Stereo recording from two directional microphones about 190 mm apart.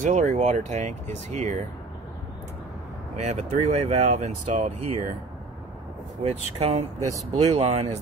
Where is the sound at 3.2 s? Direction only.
35° right (ahead or behind).